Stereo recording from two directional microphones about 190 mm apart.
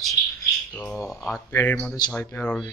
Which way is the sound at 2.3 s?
5° left (ahead or behind).